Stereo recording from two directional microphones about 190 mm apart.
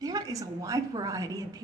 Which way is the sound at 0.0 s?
20° right (ahead or behind).